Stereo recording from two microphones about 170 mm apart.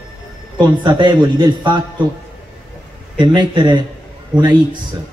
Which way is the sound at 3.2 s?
25° right (ahead or behind).